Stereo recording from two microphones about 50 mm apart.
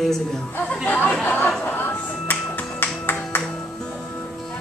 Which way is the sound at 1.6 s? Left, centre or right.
Left.